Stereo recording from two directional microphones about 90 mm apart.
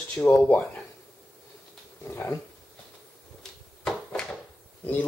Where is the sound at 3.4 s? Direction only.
10° left (ahead or behind).